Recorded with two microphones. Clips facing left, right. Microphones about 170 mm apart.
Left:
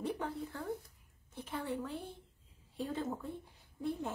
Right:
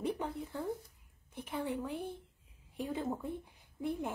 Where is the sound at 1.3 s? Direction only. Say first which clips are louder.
Right 2 dB; 15° right (ahead or behind).